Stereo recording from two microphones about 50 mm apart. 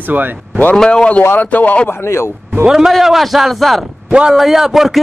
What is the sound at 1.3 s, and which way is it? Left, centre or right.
Speech, left.